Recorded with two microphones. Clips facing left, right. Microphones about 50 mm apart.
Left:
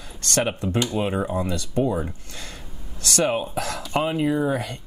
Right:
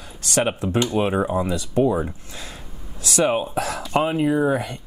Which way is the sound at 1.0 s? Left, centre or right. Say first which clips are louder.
Right 3 dB; centre.